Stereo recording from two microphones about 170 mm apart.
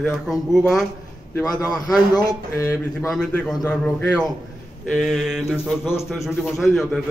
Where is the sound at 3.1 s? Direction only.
5° left (ahead or behind).